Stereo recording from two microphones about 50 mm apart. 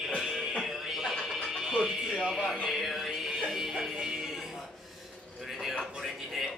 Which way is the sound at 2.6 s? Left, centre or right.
Centre.